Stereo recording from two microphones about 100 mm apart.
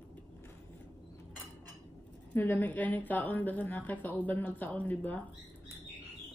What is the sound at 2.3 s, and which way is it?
A woman's voice, 20° left (ahead or behind).